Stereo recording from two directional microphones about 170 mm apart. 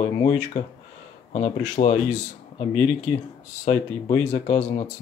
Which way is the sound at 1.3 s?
40° left (ahead or behind).